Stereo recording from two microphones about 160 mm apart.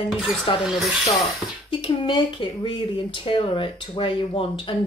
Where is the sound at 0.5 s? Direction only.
30° left (ahead or behind).